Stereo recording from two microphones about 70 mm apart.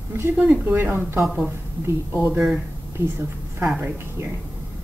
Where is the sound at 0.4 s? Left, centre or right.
Right.